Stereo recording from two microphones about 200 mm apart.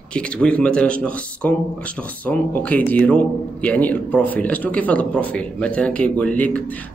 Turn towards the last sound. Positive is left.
turn(degrees=5)  # may be behind; listen again after turning